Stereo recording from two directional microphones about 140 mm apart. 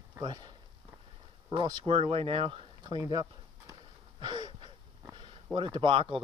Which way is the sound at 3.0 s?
25° right (ahead or behind).